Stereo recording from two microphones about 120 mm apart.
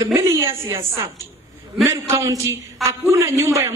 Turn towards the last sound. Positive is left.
turn(degrees=-25)  # may be behind; listen again after turning